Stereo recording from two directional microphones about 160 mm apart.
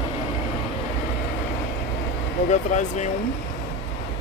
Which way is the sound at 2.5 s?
50° left (ahead or behind).